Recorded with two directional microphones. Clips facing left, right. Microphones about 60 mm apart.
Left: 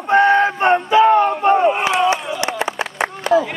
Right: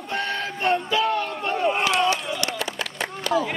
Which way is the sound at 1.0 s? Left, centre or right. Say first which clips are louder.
Left 12 dB; left.